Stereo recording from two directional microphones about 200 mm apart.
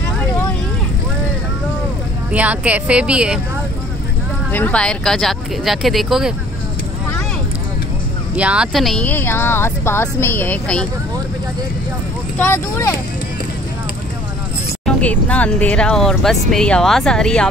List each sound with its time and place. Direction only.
2.3 s speech: 5° right (ahead or behind)
4.5 s speech: 10° left (ahead or behind)
8.4 s speech: 5° right (ahead or behind)
12.4 s speech: 10° left (ahead or behind)
14.9 s speech: 5° left (ahead or behind)